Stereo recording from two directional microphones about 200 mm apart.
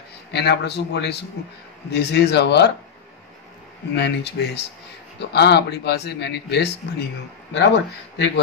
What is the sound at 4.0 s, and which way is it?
A man's voice, 55° left (ahead or behind).